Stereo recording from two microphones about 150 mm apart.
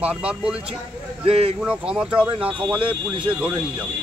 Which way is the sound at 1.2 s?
40° right (ahead or behind).